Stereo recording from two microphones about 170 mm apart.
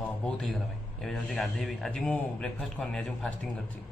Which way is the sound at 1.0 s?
5° left (ahead or behind).